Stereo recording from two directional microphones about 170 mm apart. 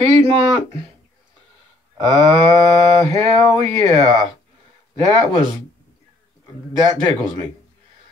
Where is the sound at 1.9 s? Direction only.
25° right (ahead or behind).